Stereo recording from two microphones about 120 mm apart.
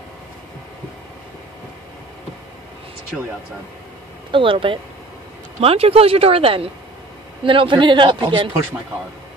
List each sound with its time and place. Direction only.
4.3 s a man's voice: 45° right (ahead or behind)